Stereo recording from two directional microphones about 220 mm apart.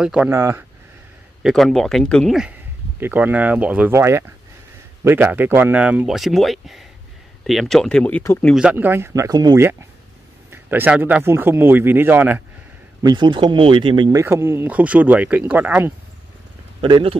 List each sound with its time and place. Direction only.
0.0 s speech: 5° right (ahead or behind)
1.4 s speech: centre (ahead or behind)
13.0 s speech: 20° right (ahead or behind)
14.2 s speech: 10° right (ahead or behind)
16.8 s speech: 20° right (ahead or behind)